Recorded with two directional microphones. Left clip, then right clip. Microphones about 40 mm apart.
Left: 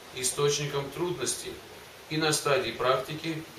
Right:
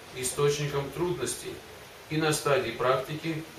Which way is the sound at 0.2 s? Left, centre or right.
Left.